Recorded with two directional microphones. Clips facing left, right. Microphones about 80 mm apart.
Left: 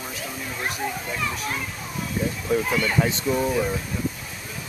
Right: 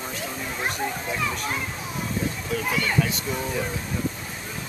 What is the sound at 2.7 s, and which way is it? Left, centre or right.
Speech, centre.